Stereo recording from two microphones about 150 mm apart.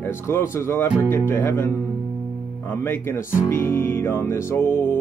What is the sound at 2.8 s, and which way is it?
Speech, 15° left (ahead or behind).